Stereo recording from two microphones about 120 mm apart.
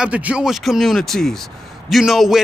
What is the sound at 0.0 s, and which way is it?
A man's voice, 10° right (ahead or behind).